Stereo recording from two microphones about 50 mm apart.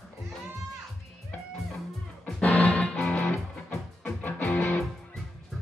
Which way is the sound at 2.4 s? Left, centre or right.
Left.